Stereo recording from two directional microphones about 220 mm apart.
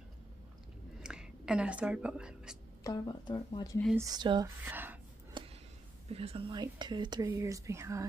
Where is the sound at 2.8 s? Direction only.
15° left (ahead or behind).